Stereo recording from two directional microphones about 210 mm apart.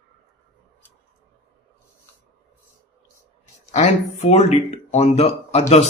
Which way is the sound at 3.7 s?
30° left (ahead or behind).